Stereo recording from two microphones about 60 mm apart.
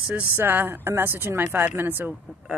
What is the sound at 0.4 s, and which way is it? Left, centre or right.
Speech, right.